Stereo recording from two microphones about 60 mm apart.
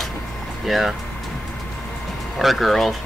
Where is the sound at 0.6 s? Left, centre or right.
Centre.